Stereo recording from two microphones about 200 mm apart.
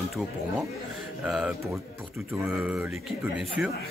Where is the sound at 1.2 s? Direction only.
5° right (ahead or behind).